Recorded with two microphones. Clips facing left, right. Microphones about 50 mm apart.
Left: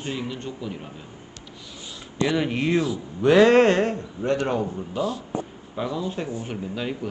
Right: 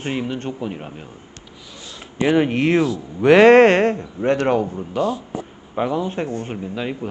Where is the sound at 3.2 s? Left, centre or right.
Right.